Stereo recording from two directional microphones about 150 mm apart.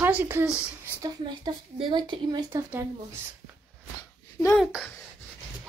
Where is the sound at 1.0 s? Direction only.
30° right (ahead or behind).